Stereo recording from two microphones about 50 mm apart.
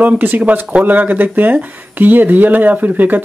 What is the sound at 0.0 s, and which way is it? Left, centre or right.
Speech, right.